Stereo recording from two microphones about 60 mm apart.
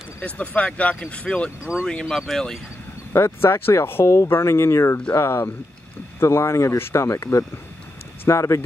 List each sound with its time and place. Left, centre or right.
0.2 s speech: left
1.6 s speech: right
1.9 s speech: centre
3.1 s speech: left